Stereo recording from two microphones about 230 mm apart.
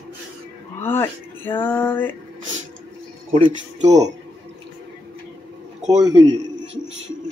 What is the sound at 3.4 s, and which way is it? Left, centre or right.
Speech, right.